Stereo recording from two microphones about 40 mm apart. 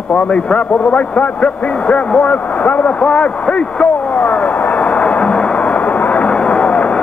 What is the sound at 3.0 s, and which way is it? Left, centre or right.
A man's voice, left.